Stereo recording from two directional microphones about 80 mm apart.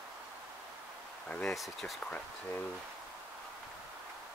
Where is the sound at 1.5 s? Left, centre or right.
Centre.